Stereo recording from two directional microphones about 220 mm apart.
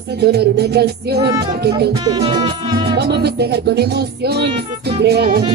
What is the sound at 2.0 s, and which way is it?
Music, 15° right (ahead or behind).